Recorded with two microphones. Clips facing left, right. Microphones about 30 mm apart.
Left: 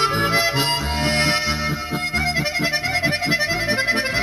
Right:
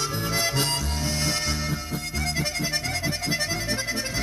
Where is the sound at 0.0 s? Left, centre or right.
Left.